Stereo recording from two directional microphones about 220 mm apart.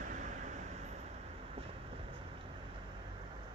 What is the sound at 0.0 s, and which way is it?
Vehicle, 35° right (ahead or behind).